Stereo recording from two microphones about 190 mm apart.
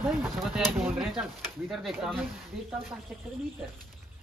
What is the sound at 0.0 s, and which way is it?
Speech, centre (ahead or behind).